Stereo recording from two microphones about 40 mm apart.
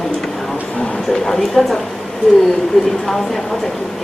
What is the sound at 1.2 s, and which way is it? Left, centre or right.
Speech, centre.